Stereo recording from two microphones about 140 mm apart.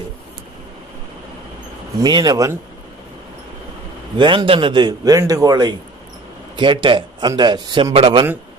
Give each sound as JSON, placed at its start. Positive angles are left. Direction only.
{"t": 2.0, "sound": "speech", "side_deg": -30}
{"t": 4.2, "sound": "a man's voice", "side_deg": -35}